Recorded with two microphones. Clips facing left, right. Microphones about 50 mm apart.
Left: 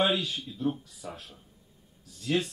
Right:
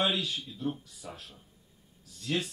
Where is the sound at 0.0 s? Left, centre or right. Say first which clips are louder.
Left 3 dB; centre.